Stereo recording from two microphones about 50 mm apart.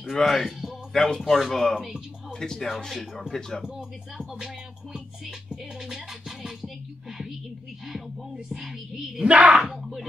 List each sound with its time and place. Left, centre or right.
0.0 s speech: centre
0.9 s speech: centre
3.6 s speech: centre
4.9 s music: centre
8.5 s speech: centre
9.2 s speech: right
9.6 s speech: centre